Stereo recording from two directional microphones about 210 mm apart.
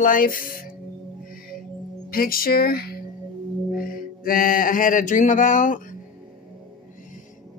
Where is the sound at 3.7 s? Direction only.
45° left (ahead or behind).